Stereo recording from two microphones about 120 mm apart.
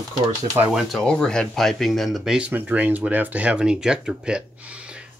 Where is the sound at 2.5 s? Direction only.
15° right (ahead or behind).